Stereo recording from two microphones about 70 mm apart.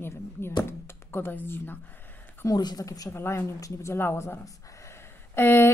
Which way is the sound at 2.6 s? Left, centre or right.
Left.